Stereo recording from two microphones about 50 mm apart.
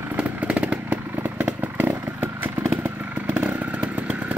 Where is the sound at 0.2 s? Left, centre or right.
Right.